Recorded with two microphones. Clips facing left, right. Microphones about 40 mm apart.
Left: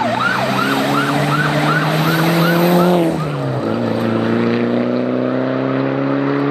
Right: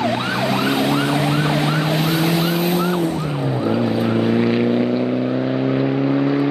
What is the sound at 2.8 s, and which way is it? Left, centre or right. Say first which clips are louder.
Vehicle: left 7 dB; left.